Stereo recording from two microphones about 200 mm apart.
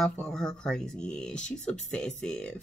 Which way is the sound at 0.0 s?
5° left (ahead or behind).